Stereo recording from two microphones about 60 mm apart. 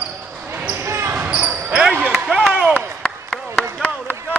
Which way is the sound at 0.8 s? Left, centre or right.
Right.